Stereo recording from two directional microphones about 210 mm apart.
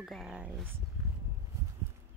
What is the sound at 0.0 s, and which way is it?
Speech, centre (ahead or behind).